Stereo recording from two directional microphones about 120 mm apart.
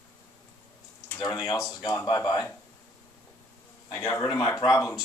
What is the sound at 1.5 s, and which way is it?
Speech, 35° left (ahead or behind).